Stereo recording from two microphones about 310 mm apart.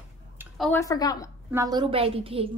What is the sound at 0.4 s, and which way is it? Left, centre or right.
Speech, centre.